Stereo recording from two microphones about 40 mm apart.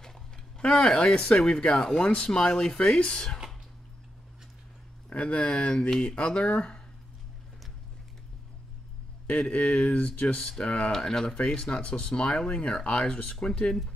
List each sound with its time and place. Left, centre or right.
0.7 s speech: centre
5.1 s speech: left
9.3 s speech: left
10.2 s speech: centre
10.9 s speech: centre